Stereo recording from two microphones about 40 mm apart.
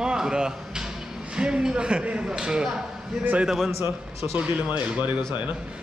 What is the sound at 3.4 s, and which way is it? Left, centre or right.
Speech, centre.